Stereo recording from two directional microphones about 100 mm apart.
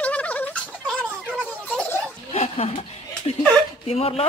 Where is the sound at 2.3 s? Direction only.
90° left.